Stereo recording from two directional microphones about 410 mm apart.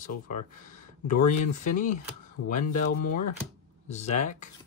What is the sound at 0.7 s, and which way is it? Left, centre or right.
Speech, centre.